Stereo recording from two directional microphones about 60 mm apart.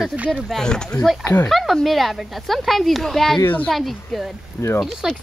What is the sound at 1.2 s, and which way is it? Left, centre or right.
Speech, left.